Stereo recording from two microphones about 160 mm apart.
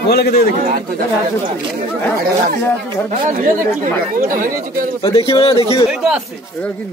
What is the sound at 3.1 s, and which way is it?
Speech, 50° right (ahead or behind).